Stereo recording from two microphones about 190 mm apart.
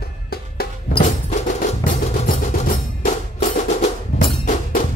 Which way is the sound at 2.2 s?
40° left (ahead or behind).